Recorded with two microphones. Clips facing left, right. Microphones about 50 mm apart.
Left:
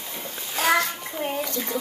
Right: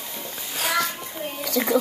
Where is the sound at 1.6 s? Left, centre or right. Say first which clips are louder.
Right 7 dB; right.